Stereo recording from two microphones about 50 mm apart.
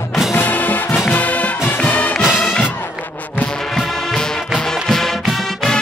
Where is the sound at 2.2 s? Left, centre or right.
Centre.